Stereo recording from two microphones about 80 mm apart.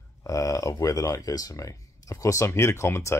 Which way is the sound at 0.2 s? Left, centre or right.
Left.